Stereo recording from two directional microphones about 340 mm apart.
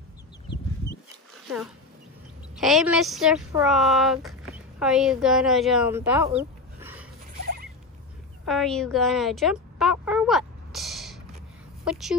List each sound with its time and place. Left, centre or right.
2.5 s a woman's voice: centre
7.4 s rodents: right
8.5 s a sound: centre
11.8 s speech: centre